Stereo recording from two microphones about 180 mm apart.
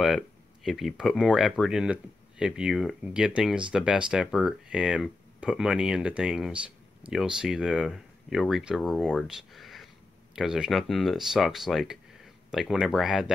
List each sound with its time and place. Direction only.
0.7 s speech: centre (ahead or behind)